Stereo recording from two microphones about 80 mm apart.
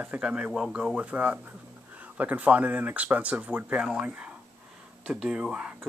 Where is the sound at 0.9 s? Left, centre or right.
Centre.